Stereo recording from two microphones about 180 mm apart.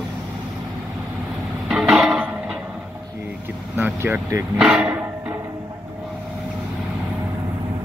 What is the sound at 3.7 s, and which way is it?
Speech, 10° right (ahead or behind).